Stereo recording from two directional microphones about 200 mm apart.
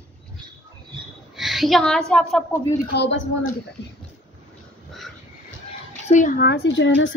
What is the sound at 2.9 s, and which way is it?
Speech, 60° left (ahead or behind).